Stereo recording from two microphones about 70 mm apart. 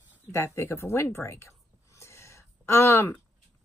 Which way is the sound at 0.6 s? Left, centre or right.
Left.